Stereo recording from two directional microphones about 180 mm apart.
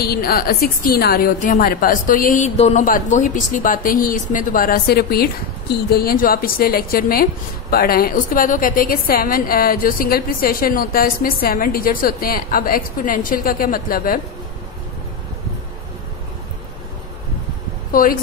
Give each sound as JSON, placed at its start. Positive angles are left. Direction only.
{"t": 0.0, "sound": "a woman's voice", "side_deg": 60}